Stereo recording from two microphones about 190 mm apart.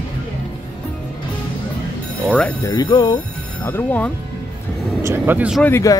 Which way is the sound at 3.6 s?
10° left (ahead or behind).